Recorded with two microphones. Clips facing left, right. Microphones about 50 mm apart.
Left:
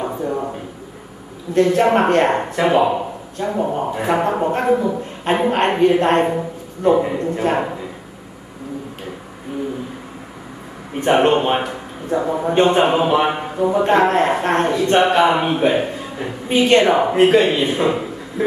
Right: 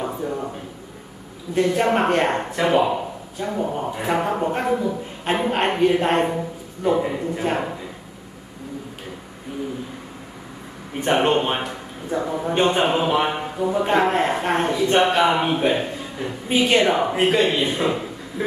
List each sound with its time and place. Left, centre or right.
0.0 s a sound: centre
1.5 s a man's voice: centre
11.0 s a man's voice: centre
12.2 s speech: centre
12.5 s a man's voice: centre